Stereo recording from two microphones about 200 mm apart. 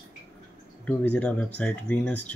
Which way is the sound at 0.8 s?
5° left (ahead or behind).